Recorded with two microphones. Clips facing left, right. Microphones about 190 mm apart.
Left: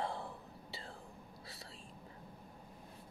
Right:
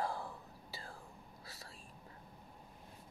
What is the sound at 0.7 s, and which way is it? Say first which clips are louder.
Whispering: left 1 dB; 25° left (ahead or behind).